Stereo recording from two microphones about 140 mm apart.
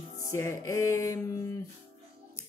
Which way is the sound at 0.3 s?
20° left (ahead or behind).